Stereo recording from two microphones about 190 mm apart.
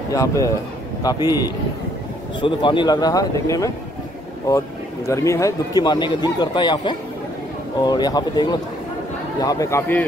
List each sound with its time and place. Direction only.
0.1 s speech: 15° left (ahead or behind)